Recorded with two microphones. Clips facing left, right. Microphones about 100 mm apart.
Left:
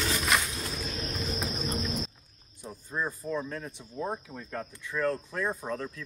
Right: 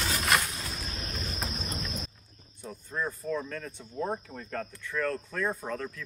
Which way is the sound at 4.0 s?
Centre (ahead or behind).